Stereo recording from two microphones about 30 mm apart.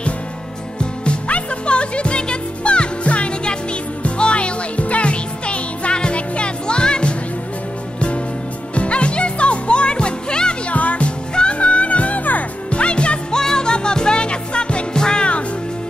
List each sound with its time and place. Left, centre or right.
1.3 s music: left
8.7 s music: left
10.7 s music: left
12.7 s music: left
13.3 s music: left
15.0 s music: left